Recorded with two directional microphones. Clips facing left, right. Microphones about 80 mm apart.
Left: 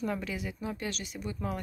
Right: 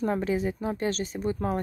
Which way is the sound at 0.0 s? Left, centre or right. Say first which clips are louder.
Right 8 dB; right.